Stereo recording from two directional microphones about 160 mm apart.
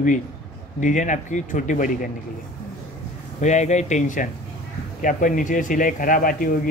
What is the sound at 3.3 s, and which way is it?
Speech, 45° left (ahead or behind).